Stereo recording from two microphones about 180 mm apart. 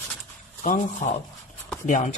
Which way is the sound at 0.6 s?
45° left (ahead or behind).